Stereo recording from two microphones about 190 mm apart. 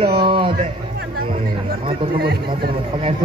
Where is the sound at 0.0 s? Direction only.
30° right (ahead or behind).